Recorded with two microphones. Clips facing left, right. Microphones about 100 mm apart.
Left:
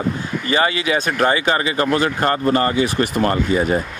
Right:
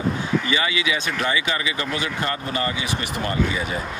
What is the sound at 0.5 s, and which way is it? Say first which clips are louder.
Speech: left 5 dB; 45° left (ahead or behind).